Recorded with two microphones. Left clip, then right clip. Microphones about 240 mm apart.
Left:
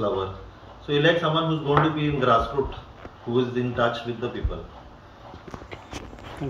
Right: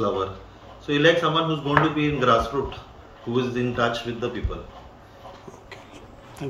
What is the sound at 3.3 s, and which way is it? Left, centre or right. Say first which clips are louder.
Speech: even; right.